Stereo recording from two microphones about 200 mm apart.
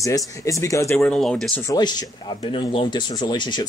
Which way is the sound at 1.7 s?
20° left (ahead or behind).